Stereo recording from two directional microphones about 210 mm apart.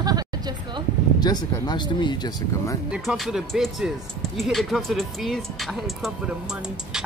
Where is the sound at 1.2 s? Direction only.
20° left (ahead or behind).